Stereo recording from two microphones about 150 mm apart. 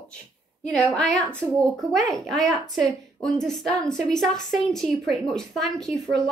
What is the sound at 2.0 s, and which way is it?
Speech, 20° right (ahead or behind).